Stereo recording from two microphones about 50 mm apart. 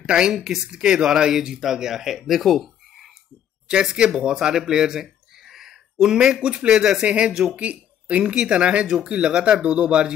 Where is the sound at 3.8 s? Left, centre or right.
Centre.